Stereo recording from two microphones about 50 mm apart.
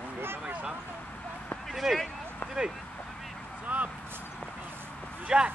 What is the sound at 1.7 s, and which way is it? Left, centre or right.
Speech, centre.